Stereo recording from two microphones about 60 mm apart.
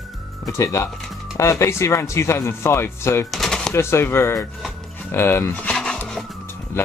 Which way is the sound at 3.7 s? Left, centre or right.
Left.